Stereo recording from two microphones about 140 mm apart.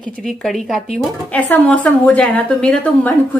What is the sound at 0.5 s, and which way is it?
Speech, centre (ahead or behind).